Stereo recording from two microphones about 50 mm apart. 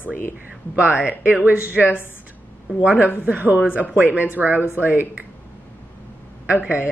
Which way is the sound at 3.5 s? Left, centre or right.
Right.